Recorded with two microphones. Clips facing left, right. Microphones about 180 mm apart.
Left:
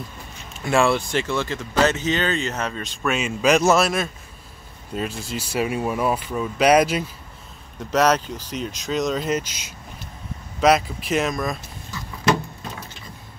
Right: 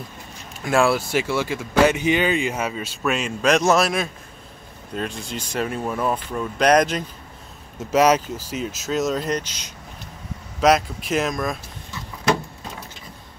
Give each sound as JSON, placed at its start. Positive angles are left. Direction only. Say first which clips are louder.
{"t": 0.7, "sound": "speech", "louder": "even", "side_deg": 0}
{"t": 7.9, "sound": "speech", "louder": "right 2 dB", "side_deg": -10}